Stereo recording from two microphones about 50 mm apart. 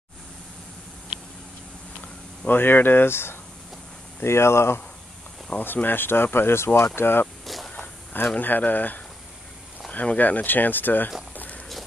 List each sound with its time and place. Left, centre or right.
2.4 s speech: left
5.6 s speech: left
7.0 s speech: left
7.4 s whip: centre
8.4 s speech: left
11.3 s a sound: left